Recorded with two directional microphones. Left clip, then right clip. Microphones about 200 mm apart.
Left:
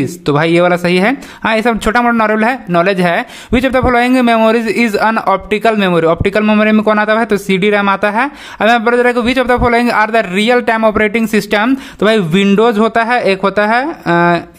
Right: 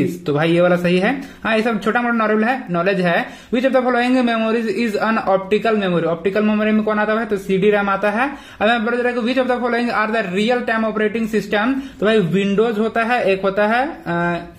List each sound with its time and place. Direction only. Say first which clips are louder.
0.3 s speech: left 5 dB; 35° left (ahead or behind)